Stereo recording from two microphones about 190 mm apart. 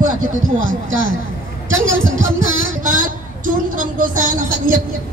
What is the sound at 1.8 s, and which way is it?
Music, 90° right.